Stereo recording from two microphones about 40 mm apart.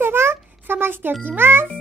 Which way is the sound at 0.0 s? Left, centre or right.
Right.